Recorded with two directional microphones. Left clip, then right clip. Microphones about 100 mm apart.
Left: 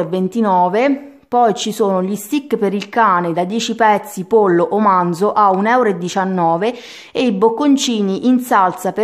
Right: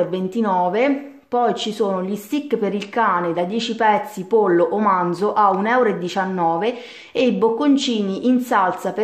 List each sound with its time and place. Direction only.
0.1 s a woman's voice: 55° left (ahead or behind)